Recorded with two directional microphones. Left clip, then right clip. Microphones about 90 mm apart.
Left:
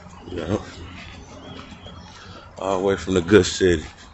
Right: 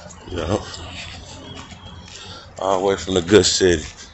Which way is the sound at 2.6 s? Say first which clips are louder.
Right 3 dB; 75° left (ahead or behind).